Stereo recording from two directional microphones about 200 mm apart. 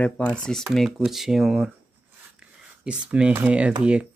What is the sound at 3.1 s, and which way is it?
Speech, 10° right (ahead or behind).